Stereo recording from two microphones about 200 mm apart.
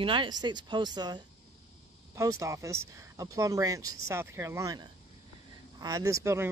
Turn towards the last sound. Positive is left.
turn(degrees=-15)  # may be behind; listen again after turning